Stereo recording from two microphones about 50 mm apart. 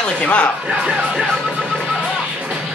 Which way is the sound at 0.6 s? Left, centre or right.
Centre.